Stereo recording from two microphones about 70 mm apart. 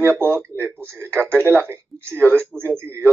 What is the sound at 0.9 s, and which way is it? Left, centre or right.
Speech, right.